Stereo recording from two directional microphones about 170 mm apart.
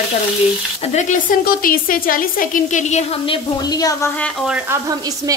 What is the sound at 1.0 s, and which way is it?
A woman's voice, 50° left (ahead or behind).